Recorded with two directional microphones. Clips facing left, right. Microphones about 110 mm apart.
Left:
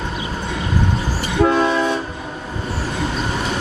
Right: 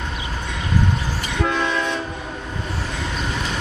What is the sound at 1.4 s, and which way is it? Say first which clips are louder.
Train: left 7 dB; 35° left (ahead or behind).